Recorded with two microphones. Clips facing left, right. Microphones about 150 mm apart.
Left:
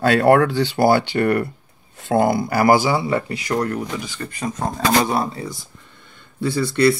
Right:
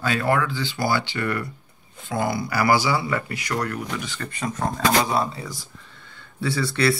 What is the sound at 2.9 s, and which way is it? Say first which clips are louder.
Speech: left 5 dB; 30° left (ahead or behind).